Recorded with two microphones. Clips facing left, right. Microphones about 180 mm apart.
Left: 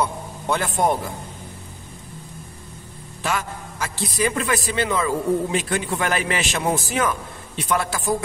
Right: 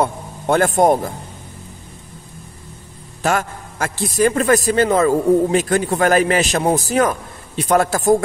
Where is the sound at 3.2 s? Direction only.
50° right (ahead or behind).